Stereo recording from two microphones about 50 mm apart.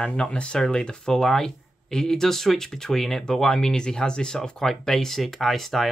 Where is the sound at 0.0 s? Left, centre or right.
Centre.